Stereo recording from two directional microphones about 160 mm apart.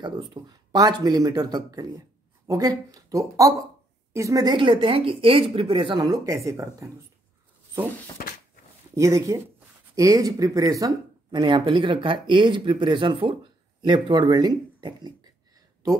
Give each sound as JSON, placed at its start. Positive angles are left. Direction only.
{"t": 0.0, "sound": "speech", "side_deg": -30}
{"t": 8.2, "sound": "a sound", "side_deg": 65}
{"t": 8.9, "sound": "speech", "side_deg": -20}